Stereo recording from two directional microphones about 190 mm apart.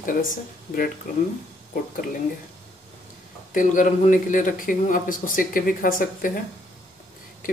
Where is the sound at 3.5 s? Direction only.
45° left (ahead or behind).